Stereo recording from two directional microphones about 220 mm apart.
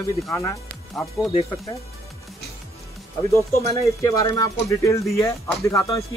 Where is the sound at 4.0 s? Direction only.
15° left (ahead or behind).